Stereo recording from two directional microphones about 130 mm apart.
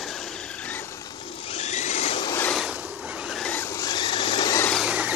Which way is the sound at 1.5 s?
55° left (ahead or behind).